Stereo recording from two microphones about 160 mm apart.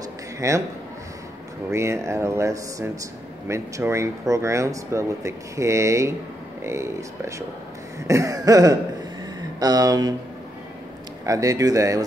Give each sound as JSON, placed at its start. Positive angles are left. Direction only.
{"t": 0.4, "sound": "speech", "side_deg": -20}
{"t": 1.7, "sound": "speech", "side_deg": -15}
{"t": 11.2, "sound": "speech", "side_deg": -20}